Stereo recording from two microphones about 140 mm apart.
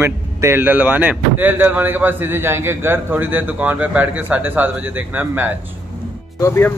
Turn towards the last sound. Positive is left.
turn(degrees=20)  # may be behind; listen again after turning